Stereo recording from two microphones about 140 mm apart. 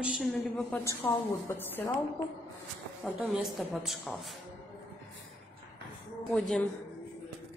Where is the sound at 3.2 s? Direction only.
5° right (ahead or behind).